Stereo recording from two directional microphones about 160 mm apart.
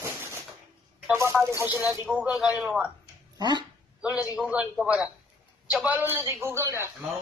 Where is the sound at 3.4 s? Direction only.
25° right (ahead or behind).